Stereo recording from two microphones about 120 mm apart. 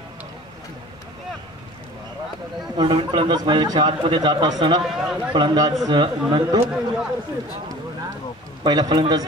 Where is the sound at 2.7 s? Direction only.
45° right (ahead or behind).